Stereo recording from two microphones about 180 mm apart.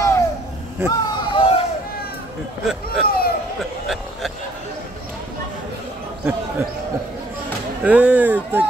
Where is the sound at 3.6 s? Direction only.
Centre (ahead or behind).